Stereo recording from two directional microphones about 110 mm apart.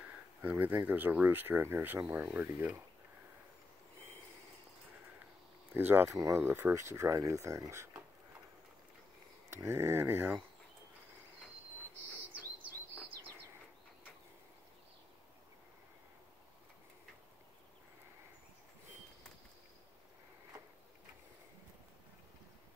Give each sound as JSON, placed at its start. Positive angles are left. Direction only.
{"t": 0.4, "sound": "speech", "side_deg": -15}
{"t": 5.7, "sound": "speech", "side_deg": -20}
{"t": 9.5, "sound": "speech", "side_deg": -25}